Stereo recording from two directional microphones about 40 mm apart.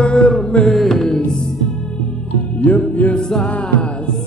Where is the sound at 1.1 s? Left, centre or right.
Left.